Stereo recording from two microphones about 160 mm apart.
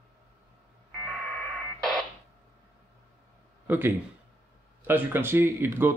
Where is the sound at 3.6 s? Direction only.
15° right (ahead or behind).